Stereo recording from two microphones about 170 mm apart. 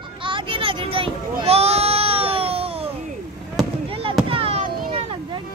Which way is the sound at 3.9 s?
35° right (ahead or behind).